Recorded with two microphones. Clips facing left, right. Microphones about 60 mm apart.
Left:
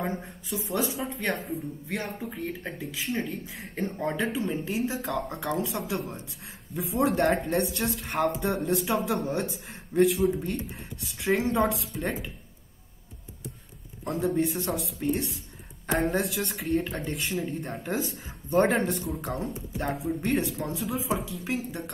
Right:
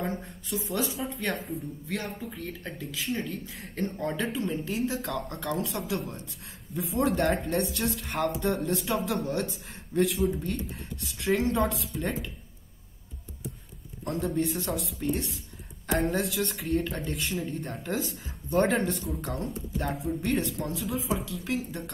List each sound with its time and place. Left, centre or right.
0.3 s speech: centre
8.6 s speech: centre
14.0 s a man's voice: centre
15.0 s speech: centre
15.9 s speech: centre